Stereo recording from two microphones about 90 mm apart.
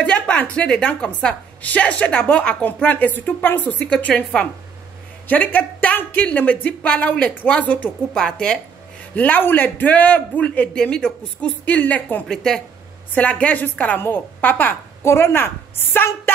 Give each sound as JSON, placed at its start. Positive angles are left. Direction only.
{"t": 0.0, "sound": "a woman's voice", "side_deg": 15}
{"t": 9.1, "sound": "a woman's voice", "side_deg": 20}
{"t": 12.3, "sound": "a woman's voice", "side_deg": 5}